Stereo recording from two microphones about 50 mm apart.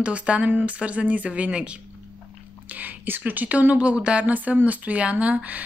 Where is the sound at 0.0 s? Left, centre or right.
Right.